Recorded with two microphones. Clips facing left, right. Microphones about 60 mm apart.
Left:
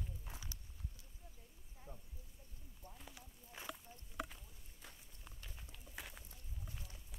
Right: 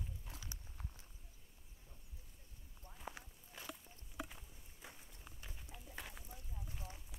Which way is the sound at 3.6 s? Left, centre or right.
Centre.